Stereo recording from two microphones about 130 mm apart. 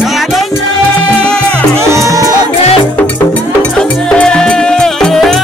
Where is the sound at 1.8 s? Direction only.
20° right (ahead or behind).